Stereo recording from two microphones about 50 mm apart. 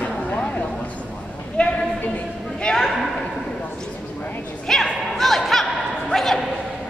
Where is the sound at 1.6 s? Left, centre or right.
Left.